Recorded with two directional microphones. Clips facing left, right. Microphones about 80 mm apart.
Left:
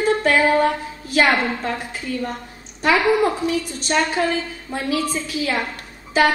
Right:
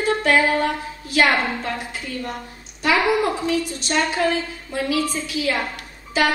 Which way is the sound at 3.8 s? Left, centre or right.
Left.